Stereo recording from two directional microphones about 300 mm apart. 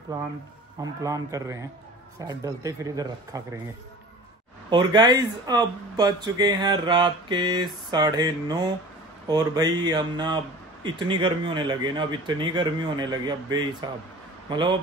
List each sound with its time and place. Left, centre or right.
1.0 s speech: centre
4.6 s speech: centre